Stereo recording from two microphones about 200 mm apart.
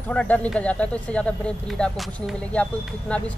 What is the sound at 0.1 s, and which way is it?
Speech, 5° left (ahead or behind).